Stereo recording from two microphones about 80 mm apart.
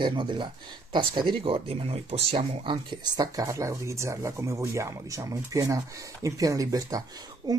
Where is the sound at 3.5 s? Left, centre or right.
Right.